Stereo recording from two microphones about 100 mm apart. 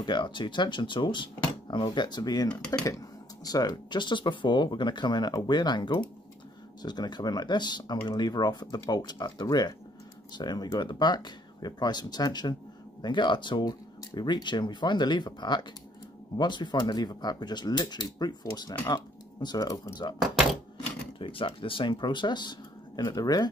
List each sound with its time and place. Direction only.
0.0 s speech: 50° left (ahead or behind)
2.5 s speech: 10° left (ahead or behind)
3.4 s speech: 40° left (ahead or behind)
20.2 s speech: 5° right (ahead or behind)
21.2 s speech: 60° left (ahead or behind); by 23.5 s 40° left (ahead or behind)